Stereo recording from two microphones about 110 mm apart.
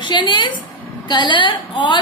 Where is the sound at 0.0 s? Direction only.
45° left (ahead or behind).